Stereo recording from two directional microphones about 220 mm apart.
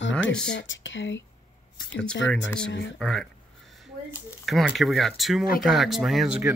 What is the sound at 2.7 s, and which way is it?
Speech, 55° left (ahead or behind).